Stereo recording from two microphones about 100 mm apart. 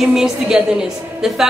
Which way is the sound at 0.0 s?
5° right (ahead or behind).